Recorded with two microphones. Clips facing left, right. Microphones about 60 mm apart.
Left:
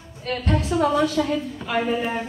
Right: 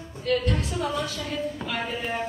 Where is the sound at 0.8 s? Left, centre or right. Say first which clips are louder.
Left 9 dB; left.